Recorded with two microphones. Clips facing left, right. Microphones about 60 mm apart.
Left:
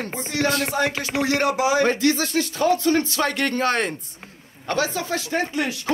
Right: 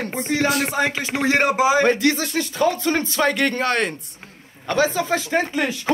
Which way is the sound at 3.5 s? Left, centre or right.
Right.